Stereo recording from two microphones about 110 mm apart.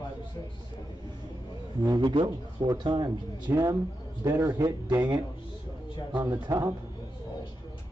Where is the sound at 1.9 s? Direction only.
40° right (ahead or behind).